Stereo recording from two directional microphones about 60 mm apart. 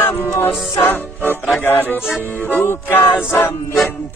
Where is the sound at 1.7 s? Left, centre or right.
Left.